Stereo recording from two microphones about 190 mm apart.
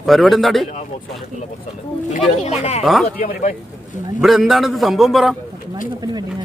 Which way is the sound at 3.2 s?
45° left (ahead or behind).